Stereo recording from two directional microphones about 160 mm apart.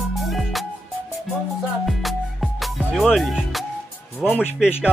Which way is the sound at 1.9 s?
Centre (ahead or behind).